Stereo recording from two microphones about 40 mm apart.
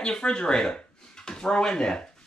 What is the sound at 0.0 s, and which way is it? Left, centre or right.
Speech, left.